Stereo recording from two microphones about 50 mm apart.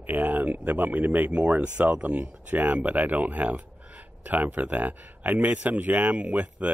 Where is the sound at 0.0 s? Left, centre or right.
Right.